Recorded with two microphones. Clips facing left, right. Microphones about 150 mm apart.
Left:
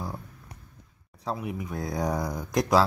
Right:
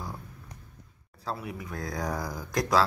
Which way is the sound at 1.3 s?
15° left (ahead or behind).